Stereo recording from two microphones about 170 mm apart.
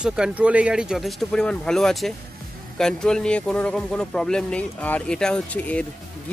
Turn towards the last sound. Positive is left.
turn(degrees=10)  # may be behind; listen again after turning